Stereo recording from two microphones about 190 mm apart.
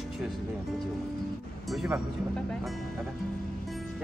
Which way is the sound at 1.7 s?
Centre (ahead or behind).